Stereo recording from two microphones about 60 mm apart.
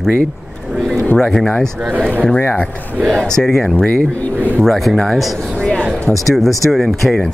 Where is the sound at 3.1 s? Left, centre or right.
Centre.